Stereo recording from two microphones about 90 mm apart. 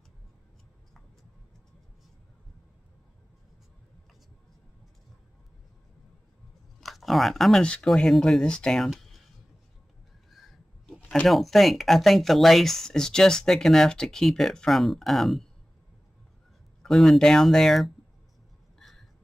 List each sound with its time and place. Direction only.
6.8 s speech: centre (ahead or behind)
10.3 s crow: centre (ahead or behind)
11.1 s speech: 5° left (ahead or behind)
16.8 s speech: 5° left (ahead or behind)
18.8 s a sound: 5° left (ahead or behind)